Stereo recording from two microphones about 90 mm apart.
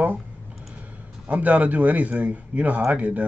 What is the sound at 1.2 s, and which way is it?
A man's voice, 15° right (ahead or behind).